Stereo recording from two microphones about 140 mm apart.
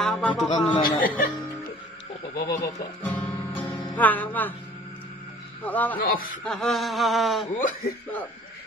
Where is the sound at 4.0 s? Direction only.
10° left (ahead or behind).